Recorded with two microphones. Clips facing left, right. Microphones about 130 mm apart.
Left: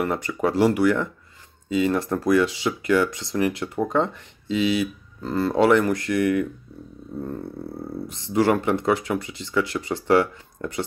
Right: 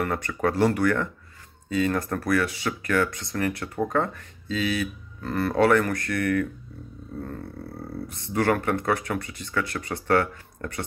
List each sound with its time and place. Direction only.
0.0 s speech: 15° left (ahead or behind)
8.3 s speech: 20° left (ahead or behind)